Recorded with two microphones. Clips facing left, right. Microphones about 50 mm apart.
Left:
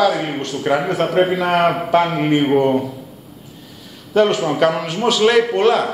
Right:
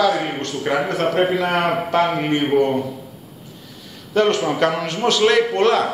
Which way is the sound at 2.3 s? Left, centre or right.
Centre.